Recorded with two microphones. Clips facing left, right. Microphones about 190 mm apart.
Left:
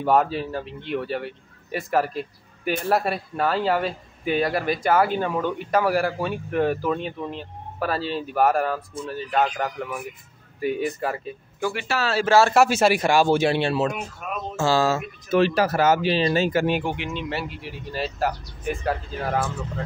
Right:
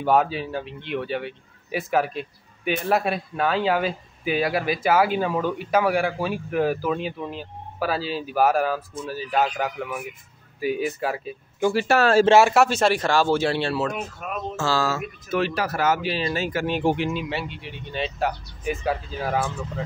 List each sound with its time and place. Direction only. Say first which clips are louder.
0.0 s a man's voice: even; centre (ahead or behind)
11.9 s speech: right 8 dB; 50° right (ahead or behind)
12.3 s speech: left 2 dB; 15° right (ahead or behind)
12.5 s speech: left 1 dB; 5° left (ahead or behind); by 16.6 s 25° left (ahead or behind)
16.8 s speech: right 6 dB; 35° right (ahead or behind)
17.1 s a man's voice: right 1 dB; 5° right (ahead or behind)